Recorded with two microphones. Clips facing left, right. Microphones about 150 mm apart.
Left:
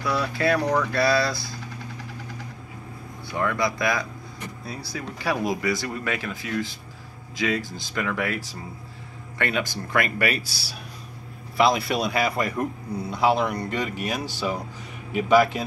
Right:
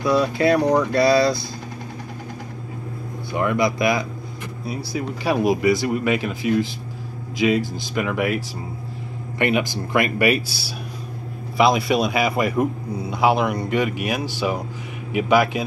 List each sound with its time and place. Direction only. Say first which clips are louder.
0.0 s speech: right 6 dB; 20° right (ahead or behind)
3.3 s a man's voice: right 5 dB; 20° right (ahead or behind)
9.4 s a man's voice: right 6 dB; 15° right (ahead or behind)
11.5 s a man's voice: right 4 dB; 10° right (ahead or behind)